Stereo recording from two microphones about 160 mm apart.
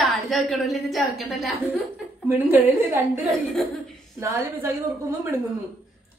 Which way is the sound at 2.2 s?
10° right (ahead or behind).